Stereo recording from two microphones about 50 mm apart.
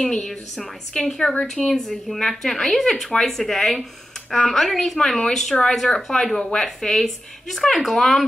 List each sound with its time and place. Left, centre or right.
0.0 s speech: centre